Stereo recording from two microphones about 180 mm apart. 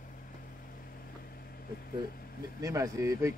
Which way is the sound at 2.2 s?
55° left (ahead or behind).